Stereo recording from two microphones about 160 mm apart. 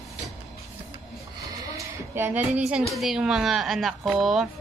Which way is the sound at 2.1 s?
10° right (ahead or behind).